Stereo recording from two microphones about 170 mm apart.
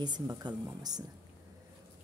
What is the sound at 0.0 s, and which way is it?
Speech, 25° right (ahead or behind).